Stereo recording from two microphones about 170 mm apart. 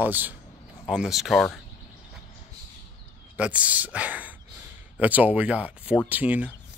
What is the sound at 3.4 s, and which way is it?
Speech, 10° right (ahead or behind).